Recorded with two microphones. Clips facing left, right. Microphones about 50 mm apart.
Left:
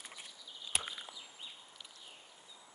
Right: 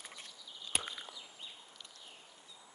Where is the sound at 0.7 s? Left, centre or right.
Centre.